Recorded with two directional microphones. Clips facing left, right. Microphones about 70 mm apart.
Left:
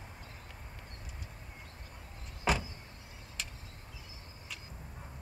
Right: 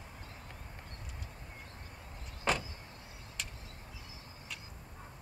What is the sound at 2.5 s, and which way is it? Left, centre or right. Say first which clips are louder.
Vehicle: left 1 dB; centre.